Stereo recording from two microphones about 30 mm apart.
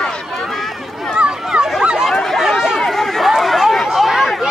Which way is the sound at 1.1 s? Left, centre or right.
Right.